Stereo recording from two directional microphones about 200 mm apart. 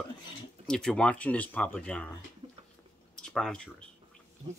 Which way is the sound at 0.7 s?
5° left (ahead or behind).